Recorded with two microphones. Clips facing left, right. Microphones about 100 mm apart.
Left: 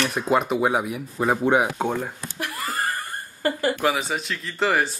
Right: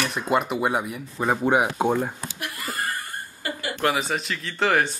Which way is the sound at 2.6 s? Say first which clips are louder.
Left 3 dB; 35° left (ahead or behind).